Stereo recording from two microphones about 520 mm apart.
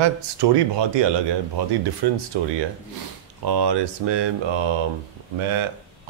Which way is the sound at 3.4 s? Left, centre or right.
Right.